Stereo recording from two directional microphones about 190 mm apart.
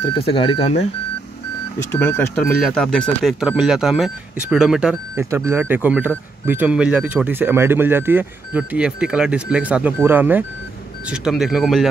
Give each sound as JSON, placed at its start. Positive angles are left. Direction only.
{"t": 0.3, "sound": "speech", "side_deg": 25}
{"t": 1.9, "sound": "speech", "side_deg": 10}